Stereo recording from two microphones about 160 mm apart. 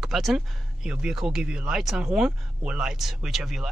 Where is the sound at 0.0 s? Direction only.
Centre (ahead or behind).